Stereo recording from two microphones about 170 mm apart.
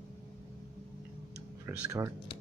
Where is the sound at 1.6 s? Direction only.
15° right (ahead or behind).